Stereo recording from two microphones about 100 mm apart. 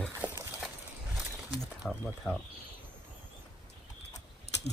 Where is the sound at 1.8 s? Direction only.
5° left (ahead or behind).